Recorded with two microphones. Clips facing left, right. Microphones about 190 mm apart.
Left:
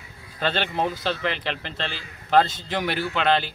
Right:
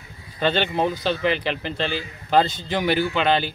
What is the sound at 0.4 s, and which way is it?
A man's voice, centre (ahead or behind).